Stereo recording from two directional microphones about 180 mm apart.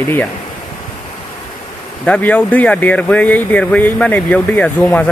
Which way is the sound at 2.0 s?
5° left (ahead or behind).